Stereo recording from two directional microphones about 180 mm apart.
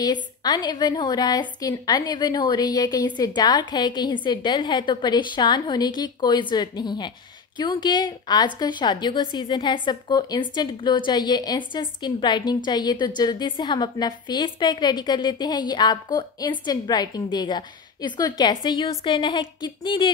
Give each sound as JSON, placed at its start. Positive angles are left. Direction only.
{"t": 0.0, "sound": "a woman's voice", "side_deg": 20}